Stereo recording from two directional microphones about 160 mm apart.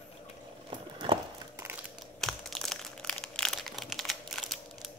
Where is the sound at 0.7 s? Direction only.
30° right (ahead or behind).